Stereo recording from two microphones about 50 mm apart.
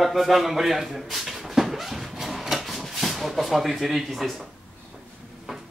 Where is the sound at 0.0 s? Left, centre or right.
Centre.